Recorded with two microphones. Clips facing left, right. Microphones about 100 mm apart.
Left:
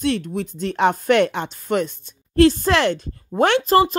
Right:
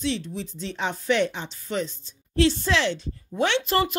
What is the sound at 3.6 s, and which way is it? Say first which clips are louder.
Speech: left 8 dB; 35° left (ahead or behind).